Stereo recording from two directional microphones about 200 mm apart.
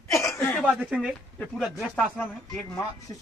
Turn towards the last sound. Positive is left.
turn(degrees=20)  # may be behind; listen again after turning